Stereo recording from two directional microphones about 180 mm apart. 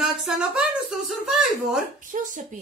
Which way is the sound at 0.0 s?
5° right (ahead or behind).